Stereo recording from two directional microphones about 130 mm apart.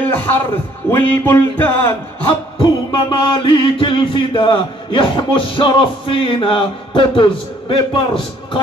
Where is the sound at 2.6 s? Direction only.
35° left (ahead or behind).